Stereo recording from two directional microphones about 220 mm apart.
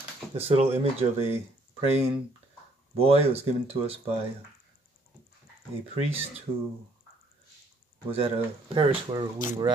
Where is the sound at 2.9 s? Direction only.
25° right (ahead or behind).